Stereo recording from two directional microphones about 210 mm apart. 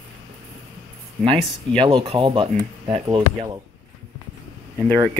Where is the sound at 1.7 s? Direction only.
25° right (ahead or behind).